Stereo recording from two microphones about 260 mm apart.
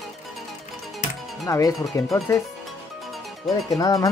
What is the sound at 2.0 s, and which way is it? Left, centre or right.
Speech, centre.